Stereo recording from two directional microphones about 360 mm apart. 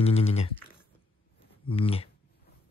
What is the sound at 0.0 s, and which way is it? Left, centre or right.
Typing, centre.